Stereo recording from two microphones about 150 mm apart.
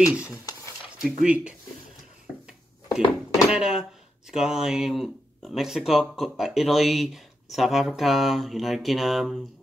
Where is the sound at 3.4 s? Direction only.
5° right (ahead or behind).